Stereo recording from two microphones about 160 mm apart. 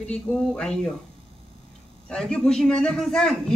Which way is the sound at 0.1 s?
5° left (ahead or behind).